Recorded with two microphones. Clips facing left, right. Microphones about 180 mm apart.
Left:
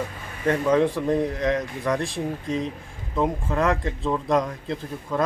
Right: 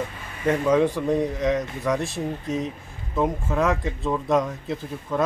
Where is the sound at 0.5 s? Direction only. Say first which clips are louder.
Even; 5° right (ahead or behind).